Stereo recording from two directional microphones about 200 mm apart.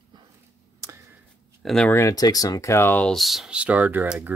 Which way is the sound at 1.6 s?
5° left (ahead or behind).